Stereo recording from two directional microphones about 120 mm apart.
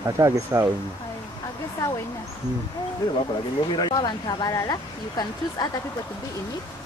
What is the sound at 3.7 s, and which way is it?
Speech, 35° left (ahead or behind).